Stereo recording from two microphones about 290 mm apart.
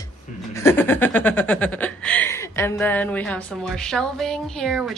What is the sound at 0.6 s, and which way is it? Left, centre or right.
Chuckle, centre.